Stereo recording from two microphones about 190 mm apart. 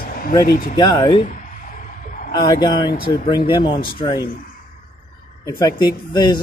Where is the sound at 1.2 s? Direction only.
40° left (ahead or behind).